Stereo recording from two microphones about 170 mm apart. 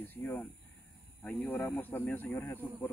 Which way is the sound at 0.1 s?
10° left (ahead or behind).